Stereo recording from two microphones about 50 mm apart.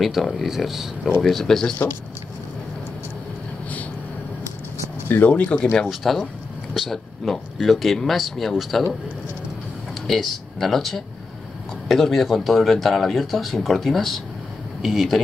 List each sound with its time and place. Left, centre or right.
0.0 s speech: centre
0.6 s speech: centre
1.2 s speech: centre
5.2 s speech: left
5.9 s speech: centre
10.0 s speech: centre